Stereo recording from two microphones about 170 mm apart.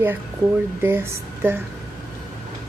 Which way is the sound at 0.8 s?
15° right (ahead or behind).